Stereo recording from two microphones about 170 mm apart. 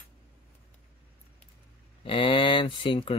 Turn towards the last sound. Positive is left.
turn(degrees=30)  # may be behind; listen again after turning